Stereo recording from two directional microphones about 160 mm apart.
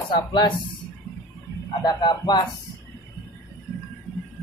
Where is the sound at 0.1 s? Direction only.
30° left (ahead or behind).